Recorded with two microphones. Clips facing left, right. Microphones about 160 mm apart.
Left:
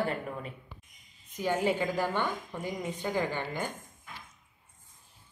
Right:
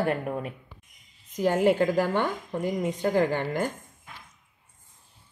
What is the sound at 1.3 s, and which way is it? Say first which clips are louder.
Speech: right 6 dB; 45° right (ahead or behind).